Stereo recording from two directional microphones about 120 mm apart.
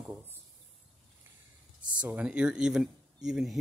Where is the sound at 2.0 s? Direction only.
10° right (ahead or behind).